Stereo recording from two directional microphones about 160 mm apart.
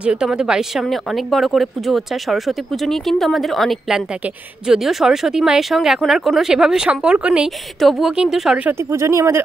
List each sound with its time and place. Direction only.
0.0 s speech: 5° right (ahead or behind)
8.9 s speech: 20° right (ahead or behind)